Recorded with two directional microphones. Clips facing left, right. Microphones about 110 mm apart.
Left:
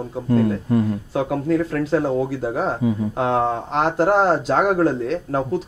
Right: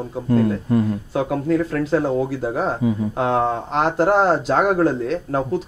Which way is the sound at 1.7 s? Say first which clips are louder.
Even; 20° right (ahead or behind).